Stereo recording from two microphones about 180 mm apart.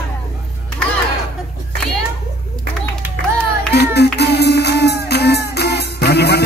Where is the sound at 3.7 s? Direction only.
65° left (ahead or behind).